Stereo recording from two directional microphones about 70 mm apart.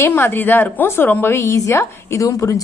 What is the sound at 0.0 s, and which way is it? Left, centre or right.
A woman's voice, left.